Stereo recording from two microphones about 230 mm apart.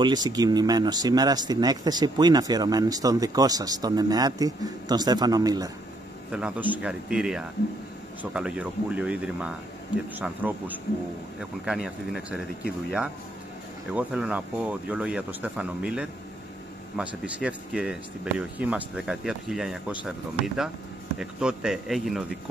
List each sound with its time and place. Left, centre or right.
0.0 s speech: centre
6.3 s speech: centre
13.9 s speech: centre
17.4 s speech: centre